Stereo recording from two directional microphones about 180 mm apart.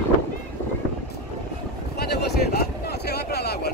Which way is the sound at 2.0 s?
65° left (ahead or behind).